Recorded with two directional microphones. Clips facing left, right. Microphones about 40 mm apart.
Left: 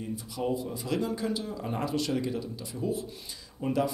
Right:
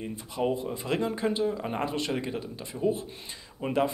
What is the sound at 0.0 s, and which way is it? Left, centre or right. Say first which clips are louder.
Speech: right 3 dB; right.